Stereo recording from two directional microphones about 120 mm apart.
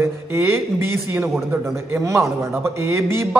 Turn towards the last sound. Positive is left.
turn(degrees=-20)  # may be behind; listen again after turning